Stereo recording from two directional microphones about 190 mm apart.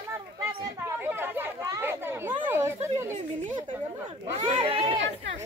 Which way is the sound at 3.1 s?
40° right (ahead or behind).